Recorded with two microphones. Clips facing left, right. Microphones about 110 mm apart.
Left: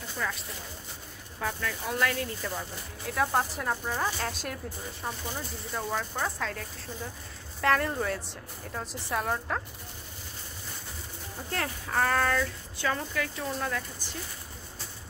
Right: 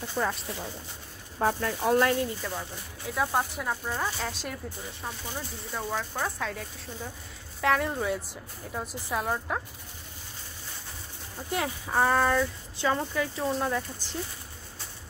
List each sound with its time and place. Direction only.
0.2 s speech: 35° right (ahead or behind)
1.4 s speech: 45° right (ahead or behind)
2.0 s speech: 25° right (ahead or behind)
2.4 s speech: centre (ahead or behind)
11.5 s speech: 10° right (ahead or behind)